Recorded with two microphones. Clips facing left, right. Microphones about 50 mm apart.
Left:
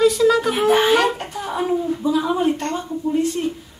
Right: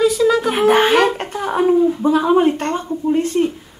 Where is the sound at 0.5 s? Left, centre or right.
Right.